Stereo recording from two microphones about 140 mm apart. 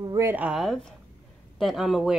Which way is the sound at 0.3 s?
10° right (ahead or behind).